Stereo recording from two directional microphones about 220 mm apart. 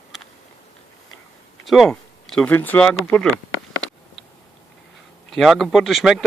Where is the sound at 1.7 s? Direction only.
Centre (ahead or behind).